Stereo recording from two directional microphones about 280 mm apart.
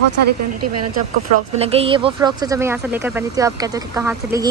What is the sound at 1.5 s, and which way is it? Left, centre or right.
Speech, right.